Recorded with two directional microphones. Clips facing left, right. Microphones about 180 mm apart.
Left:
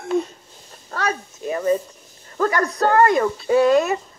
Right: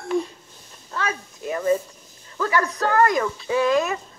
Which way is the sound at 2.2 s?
45° left (ahead or behind).